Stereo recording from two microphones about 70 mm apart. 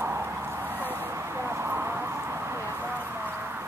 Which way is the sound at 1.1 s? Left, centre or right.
Right.